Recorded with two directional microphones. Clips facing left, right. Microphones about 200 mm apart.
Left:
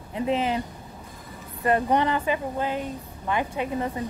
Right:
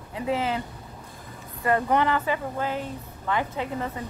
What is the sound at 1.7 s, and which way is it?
A woman's voice, 20° left (ahead or behind).